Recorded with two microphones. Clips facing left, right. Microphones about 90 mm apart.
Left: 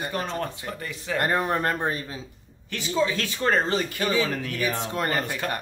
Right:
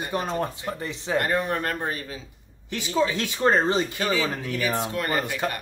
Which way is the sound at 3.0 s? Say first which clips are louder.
Right 2 dB; 20° right (ahead or behind).